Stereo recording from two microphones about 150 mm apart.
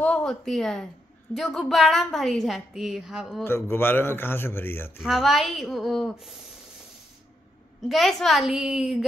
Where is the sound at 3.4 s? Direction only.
15° left (ahead or behind).